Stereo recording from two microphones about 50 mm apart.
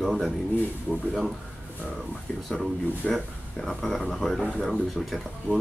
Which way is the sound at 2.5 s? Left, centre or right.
Centre.